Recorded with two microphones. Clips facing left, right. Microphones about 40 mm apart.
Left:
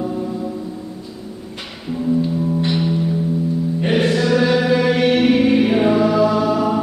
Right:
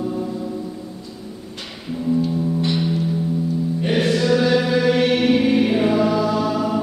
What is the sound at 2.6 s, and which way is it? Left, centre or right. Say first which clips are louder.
Music: left 2 dB; centre.